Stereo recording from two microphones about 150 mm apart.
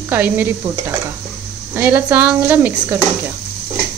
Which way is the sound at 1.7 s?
10° right (ahead or behind).